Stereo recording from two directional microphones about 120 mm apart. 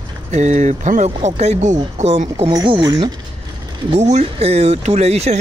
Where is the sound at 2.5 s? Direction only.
40° right (ahead or behind).